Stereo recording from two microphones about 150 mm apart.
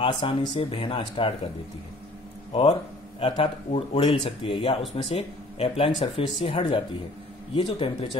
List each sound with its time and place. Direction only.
0.0 s speech: 35° left (ahead or behind)
3.2 s speech: 35° left (ahead or behind)